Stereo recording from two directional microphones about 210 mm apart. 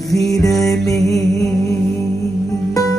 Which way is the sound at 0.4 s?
Centre (ahead or behind).